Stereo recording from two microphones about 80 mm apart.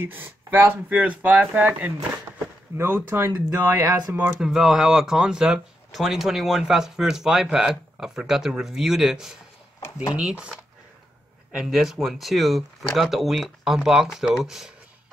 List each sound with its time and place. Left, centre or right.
0.0 s speech: right
4.4 s speech: centre